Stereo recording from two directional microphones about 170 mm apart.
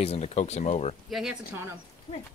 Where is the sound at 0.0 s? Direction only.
40° left (ahead or behind).